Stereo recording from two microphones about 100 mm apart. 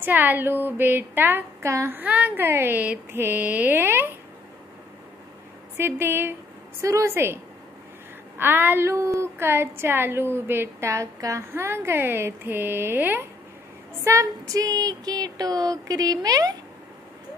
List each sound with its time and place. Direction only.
0.0 s a woman's voice: 20° right (ahead or behind)
5.8 s a woman's voice: 25° right (ahead or behind)
8.4 s a woman's voice: 20° right (ahead or behind)
14.0 s a sound: 30° right (ahead or behind)